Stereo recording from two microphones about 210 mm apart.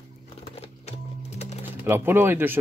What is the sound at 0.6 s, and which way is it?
Music, 30° left (ahead or behind).